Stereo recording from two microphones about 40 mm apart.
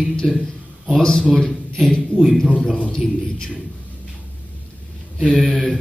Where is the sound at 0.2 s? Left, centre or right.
Centre.